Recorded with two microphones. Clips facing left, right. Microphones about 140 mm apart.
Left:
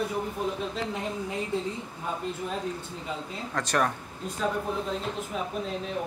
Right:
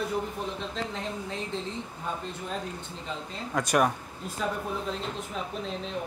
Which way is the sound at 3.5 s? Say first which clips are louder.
Right 2 dB; 10° right (ahead or behind).